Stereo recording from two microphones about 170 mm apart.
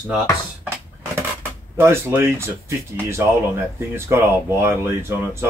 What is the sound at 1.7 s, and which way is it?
Speech, 15° right (ahead or behind).